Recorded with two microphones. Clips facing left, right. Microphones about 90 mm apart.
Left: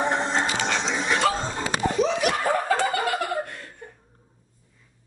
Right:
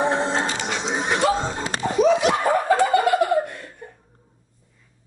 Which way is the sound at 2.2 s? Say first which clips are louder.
Right 4 dB; 20° right (ahead or behind).